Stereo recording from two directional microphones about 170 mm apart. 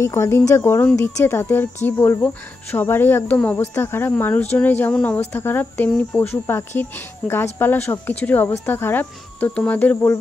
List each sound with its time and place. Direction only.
0.0 s speech: 15° left (ahead or behind)